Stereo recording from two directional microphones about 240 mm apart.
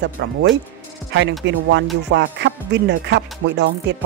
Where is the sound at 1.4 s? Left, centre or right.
Right.